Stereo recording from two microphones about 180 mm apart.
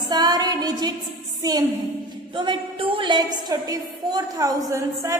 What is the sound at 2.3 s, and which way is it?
A woman's voice, 25° right (ahead or behind).